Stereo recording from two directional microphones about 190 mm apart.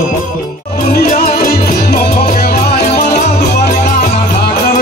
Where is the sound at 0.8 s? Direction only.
50° left (ahead or behind).